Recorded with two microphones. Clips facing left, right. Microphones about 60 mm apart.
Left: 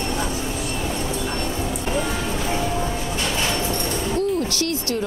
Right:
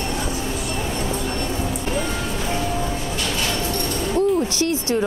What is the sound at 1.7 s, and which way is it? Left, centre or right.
Music, centre.